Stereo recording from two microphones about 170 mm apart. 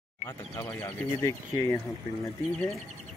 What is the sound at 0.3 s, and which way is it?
Speech, 15° left (ahead or behind).